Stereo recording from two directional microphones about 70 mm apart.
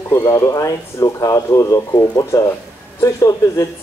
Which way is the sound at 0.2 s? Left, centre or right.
Left.